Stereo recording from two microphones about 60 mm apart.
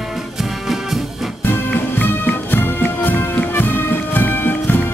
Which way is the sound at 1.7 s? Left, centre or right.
Left.